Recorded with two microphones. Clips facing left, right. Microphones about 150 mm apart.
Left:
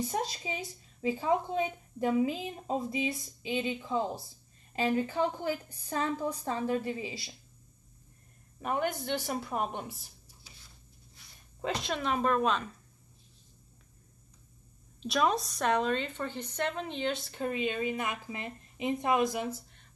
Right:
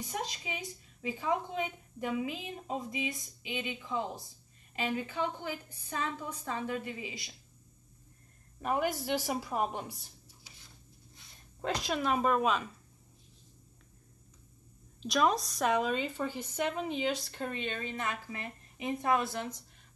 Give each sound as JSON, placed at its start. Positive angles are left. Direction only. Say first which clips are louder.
{"t": 0.1, "sound": "a woman's voice", "louder": "left 4 dB", "side_deg": 35}
{"t": 8.5, "sound": "speech", "louder": "even", "side_deg": 0}
{"t": 11.6, "sound": "speech", "louder": "even", "side_deg": 0}
{"t": 15.0, "sound": "speech", "louder": "even", "side_deg": 0}